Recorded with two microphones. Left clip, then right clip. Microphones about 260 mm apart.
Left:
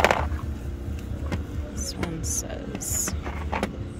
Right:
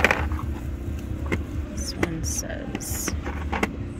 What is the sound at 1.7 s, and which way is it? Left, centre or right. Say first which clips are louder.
Music: right 4 dB; centre.